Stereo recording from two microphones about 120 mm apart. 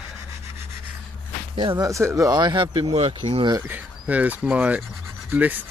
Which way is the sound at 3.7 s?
15° right (ahead or behind).